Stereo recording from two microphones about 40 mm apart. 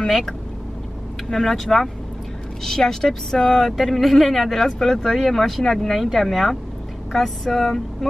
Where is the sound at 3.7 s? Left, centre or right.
Centre.